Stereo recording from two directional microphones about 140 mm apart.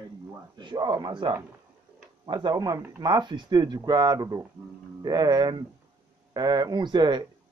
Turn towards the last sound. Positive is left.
turn(degrees=-30)  # may be behind; listen again after turning